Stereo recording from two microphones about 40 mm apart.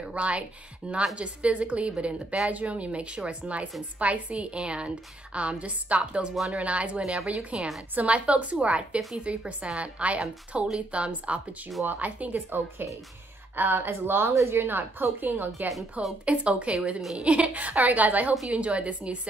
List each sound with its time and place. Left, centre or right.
0.1 s a woman's voice: right
12.4 s a woman's voice: right
16.3 s a woman's voice: right